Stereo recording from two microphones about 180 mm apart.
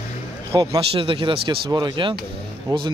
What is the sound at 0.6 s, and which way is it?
Speech, 30° right (ahead or behind).